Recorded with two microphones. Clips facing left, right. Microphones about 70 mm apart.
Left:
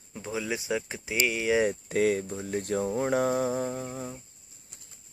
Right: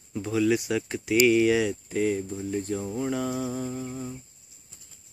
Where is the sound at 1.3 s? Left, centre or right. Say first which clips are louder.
Right 8 dB; centre.